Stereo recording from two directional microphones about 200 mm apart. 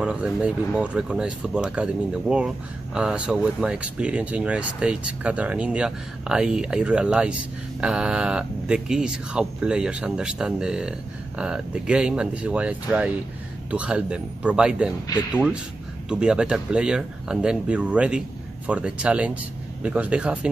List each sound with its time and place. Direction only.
0.0 s speech: 5° right (ahead or behind)